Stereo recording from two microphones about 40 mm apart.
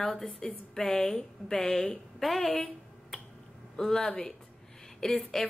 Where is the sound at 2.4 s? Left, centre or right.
Left.